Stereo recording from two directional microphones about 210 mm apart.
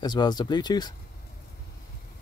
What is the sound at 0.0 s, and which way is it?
Speech, 20° left (ahead or behind).